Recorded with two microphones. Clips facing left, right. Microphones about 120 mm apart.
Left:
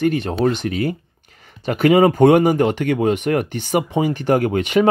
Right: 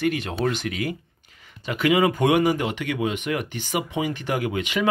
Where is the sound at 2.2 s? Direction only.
40° left (ahead or behind).